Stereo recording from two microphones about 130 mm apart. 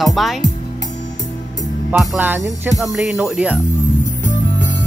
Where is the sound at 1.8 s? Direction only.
10° right (ahead or behind).